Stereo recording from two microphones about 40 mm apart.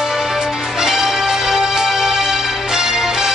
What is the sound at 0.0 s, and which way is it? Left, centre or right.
Music, centre.